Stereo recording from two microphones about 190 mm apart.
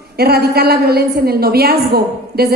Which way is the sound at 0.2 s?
55° right (ahead or behind).